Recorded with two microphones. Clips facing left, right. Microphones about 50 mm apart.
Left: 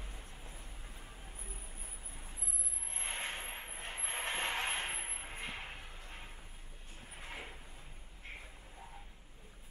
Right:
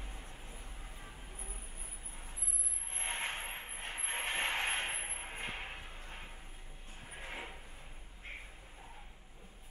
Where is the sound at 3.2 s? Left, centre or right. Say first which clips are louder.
Right 2 dB; centre.